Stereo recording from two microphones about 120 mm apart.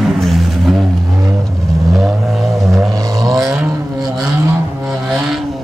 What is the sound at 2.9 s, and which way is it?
Vehicle, 30° right (ahead or behind).